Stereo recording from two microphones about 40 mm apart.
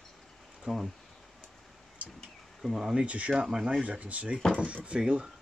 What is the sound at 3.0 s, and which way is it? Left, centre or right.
Speech, right.